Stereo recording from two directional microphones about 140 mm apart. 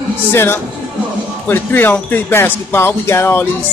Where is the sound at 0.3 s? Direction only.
15° left (ahead or behind).